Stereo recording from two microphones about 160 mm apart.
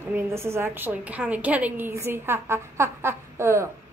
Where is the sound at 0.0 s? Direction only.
15° right (ahead or behind).